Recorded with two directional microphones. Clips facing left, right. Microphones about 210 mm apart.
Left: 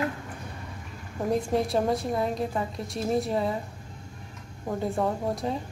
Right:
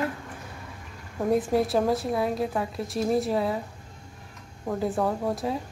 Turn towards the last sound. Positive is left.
turn(degrees=0)  # may be behind; listen again after turning